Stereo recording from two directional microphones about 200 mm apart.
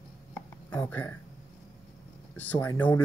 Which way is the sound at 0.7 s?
10° left (ahead or behind).